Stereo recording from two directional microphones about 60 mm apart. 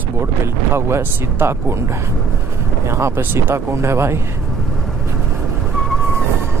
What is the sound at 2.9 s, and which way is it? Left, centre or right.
Speech, right.